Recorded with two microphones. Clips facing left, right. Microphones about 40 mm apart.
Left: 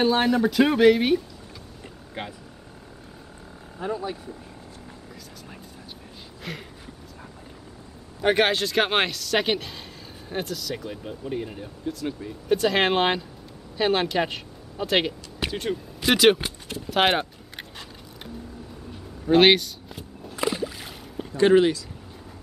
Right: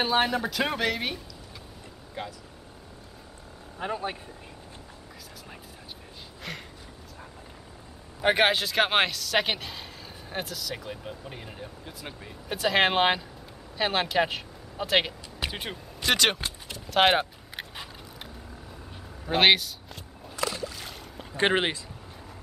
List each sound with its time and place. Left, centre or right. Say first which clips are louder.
0.0 s speech: left 4 dB; centre
2.2 s speech: left 2 dB; left
3.8 s speech: left 2 dB; right
6.5 s speech: left 2 dB; centre
8.2 s speech: left 2 dB; centre
11.8 s speech: left 10 dB; centre
12.4 s speech: left 3 dB; centre
15.5 s speech: left 8 dB; centre
16.0 s speech: left 6 dB; centre
16.8 s a sound: even; centre
20.3 s a sound: left 4 dB; centre
21.4 s speech: left 7 dB; right